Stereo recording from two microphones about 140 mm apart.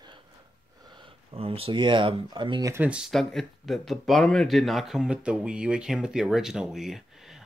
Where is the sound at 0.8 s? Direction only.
35° right (ahead or behind).